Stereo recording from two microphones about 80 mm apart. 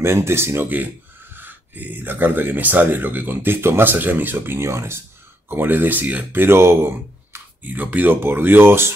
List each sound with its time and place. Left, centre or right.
0.0 s speech: right